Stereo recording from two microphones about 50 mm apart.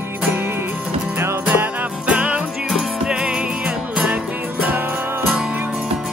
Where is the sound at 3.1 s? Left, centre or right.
Centre.